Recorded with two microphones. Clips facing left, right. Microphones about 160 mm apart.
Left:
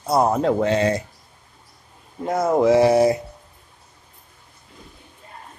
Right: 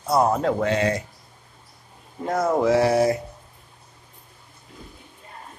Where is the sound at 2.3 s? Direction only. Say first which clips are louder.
Left 3 dB; 15° left (ahead or behind).